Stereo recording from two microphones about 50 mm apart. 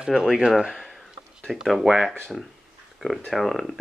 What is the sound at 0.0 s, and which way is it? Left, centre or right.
Speech, centre.